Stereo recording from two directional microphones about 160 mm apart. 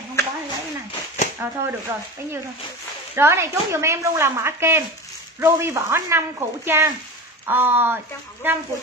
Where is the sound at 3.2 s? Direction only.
15° right (ahead or behind).